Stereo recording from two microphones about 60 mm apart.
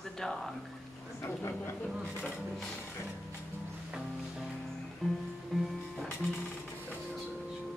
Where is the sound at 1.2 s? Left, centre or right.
Left.